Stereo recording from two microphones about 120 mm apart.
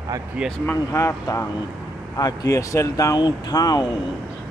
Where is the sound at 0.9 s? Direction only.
25° left (ahead or behind).